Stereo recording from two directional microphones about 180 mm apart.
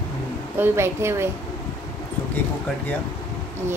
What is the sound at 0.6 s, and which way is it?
Speech, 15° right (ahead or behind).